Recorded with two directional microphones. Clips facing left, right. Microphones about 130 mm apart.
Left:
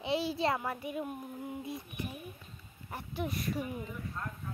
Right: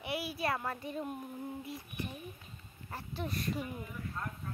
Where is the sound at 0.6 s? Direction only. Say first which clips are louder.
Left 2 dB; 10° left (ahead or behind).